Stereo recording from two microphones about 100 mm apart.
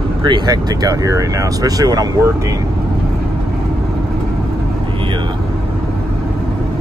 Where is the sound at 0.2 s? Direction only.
55° right (ahead or behind).